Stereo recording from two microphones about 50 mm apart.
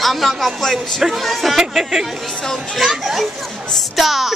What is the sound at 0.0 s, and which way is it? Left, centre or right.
A man's voice, centre.